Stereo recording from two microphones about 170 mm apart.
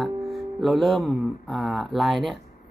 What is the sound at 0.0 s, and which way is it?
Music, centre (ahead or behind).